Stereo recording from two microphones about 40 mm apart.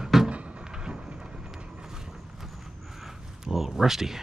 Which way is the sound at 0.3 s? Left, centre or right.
Right.